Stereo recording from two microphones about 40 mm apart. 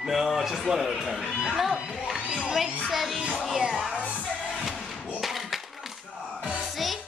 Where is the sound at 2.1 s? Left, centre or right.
Centre.